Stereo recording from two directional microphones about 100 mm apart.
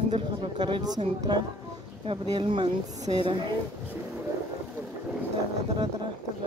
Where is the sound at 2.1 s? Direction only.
60° right (ahead or behind).